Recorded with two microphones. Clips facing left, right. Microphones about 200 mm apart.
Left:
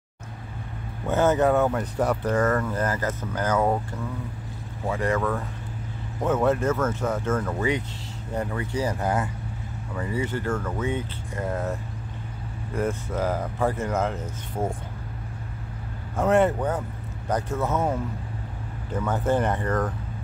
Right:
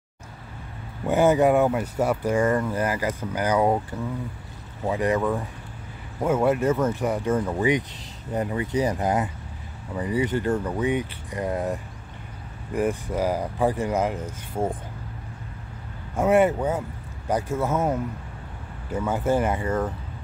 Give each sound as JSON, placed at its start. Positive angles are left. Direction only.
{"t": 1.0, "sound": "speech", "side_deg": -10}
{"t": 4.8, "sound": "speech", "side_deg": -15}
{"t": 16.2, "sound": "speech", "side_deg": -10}
{"t": 18.9, "sound": "speech", "side_deg": -10}